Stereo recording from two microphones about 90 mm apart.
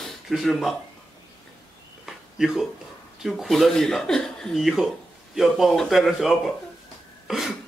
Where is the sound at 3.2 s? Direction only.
Centre (ahead or behind).